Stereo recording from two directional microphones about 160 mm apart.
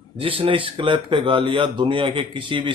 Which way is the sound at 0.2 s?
35° right (ahead or behind).